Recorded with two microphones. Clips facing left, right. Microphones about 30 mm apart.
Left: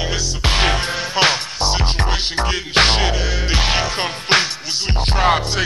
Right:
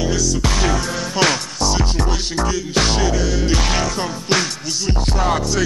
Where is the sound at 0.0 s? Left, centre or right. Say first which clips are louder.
Right 2 dB; left.